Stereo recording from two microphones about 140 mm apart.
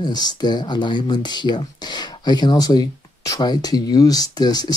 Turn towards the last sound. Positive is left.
turn(degrees=30)  # may be behind; listen again after turning